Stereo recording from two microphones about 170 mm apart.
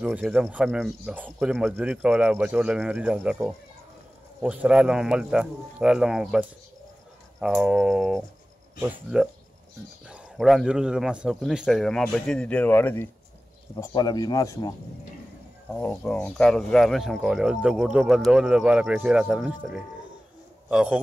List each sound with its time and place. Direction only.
0.0 s speech: 5° right (ahead or behind); by 13.1 s 10° left (ahead or behind)
13.7 s speech: 25° left (ahead or behind)
15.7 s speech: 5° left (ahead or behind)